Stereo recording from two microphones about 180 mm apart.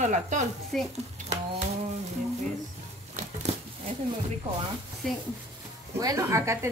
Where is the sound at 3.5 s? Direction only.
35° right (ahead or behind).